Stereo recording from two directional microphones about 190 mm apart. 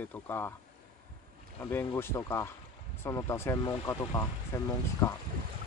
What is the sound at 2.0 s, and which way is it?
Speech, 15° left (ahead or behind).